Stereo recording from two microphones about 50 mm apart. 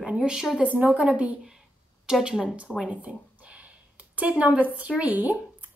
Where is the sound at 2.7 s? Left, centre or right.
Right.